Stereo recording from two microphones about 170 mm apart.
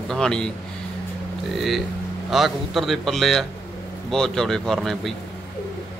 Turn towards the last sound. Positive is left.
turn(degrees=0)  # may be behind; listen again after turning